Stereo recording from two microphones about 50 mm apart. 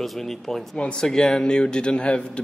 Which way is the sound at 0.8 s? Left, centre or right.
Centre.